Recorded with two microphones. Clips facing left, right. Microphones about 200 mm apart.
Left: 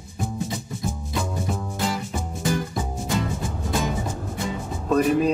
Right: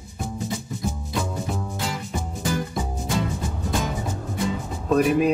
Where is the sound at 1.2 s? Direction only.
Centre (ahead or behind).